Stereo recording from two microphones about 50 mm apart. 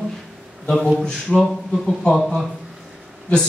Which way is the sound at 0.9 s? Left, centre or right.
Centre.